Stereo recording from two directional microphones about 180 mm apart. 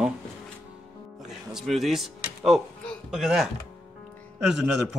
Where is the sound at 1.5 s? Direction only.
Centre (ahead or behind).